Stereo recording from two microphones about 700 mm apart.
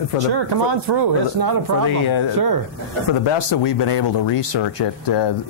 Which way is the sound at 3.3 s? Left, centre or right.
Left.